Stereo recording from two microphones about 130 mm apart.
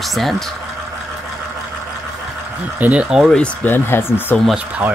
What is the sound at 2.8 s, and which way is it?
Speech, 10° right (ahead or behind).